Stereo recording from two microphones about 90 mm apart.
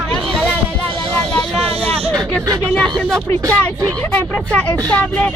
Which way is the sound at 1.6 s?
90° right.